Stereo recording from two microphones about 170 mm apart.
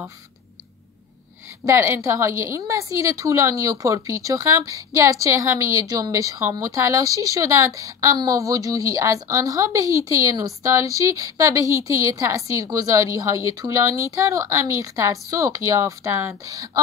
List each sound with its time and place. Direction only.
1.7 s a woman's voice: 15° right (ahead or behind)